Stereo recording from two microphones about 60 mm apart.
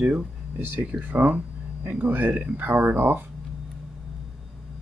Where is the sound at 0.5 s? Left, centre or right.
Right.